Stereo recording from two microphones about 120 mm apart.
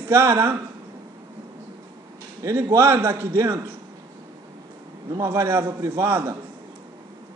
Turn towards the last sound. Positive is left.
turn(degrees=-20)  # may be behind; listen again after turning